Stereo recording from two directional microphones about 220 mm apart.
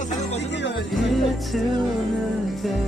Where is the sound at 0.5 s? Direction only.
55° left (ahead or behind).